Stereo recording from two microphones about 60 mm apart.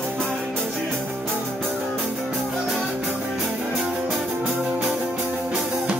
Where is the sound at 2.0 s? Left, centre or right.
Centre.